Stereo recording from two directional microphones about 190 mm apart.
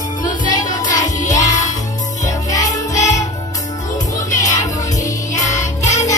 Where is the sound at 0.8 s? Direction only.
40° left (ahead or behind).